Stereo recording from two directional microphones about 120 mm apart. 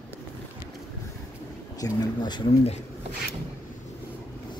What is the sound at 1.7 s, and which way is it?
Speech, 30° left (ahead or behind).